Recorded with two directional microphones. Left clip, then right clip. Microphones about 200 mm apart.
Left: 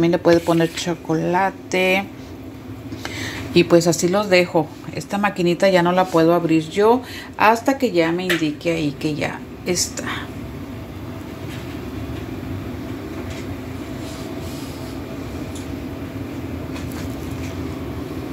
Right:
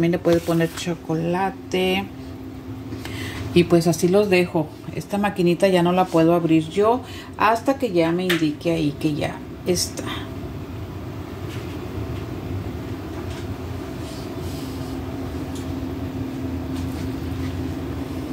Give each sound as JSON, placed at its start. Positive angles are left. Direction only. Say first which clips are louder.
{"t": 0.0, "sound": "speech", "louder": "left 4 dB", "side_deg": 10}
{"t": 3.5, "sound": "speech", "louder": "left 3 dB", "side_deg": 15}
{"t": 4.9, "sound": "speech", "louder": "left 2 dB", "side_deg": 0}